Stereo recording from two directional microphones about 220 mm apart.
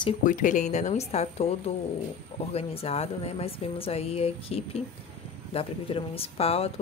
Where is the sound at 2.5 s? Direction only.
25° left (ahead or behind).